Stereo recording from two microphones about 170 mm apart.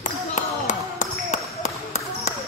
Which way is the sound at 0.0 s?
45° left (ahead or behind).